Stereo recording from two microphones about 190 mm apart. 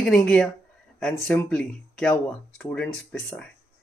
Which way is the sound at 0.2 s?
5° left (ahead or behind).